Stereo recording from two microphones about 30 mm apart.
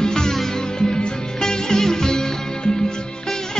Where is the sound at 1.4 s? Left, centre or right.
Centre.